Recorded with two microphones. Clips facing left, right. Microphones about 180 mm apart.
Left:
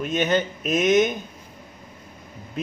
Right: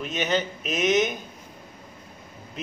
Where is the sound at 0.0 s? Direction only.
50° left (ahead or behind).